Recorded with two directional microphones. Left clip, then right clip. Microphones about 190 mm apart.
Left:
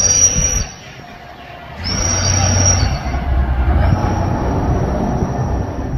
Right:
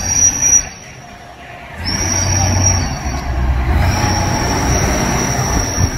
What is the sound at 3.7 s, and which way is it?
Train, 5° right (ahead or behind).